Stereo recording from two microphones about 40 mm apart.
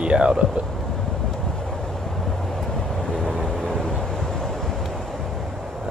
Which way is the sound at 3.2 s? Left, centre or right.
Centre.